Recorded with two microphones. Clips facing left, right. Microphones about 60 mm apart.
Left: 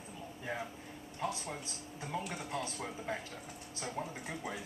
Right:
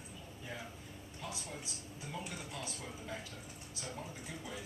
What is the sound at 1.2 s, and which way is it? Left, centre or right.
Speech, left.